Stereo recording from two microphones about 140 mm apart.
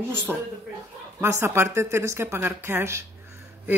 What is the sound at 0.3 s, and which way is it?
A woman's voice, 15° right (ahead or behind).